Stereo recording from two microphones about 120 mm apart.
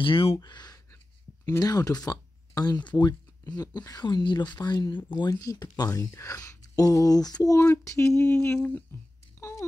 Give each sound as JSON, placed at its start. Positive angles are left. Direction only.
{"t": 0.0, "sound": "speech", "side_deg": 50}
{"t": 0.4, "sound": "speech", "side_deg": 35}
{"t": 8.2, "sound": "speech", "side_deg": 15}
{"t": 9.4, "sound": "a sound", "side_deg": 20}